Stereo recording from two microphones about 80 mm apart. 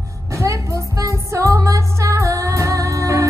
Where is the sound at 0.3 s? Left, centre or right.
Right.